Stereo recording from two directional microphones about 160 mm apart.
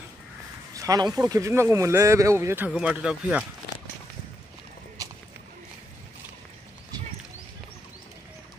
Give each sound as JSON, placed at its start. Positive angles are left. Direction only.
{"t": 0.7, "sound": "speech", "side_deg": -25}